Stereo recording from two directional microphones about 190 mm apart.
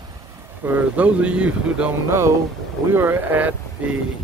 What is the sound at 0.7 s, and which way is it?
Speech, 10° right (ahead or behind).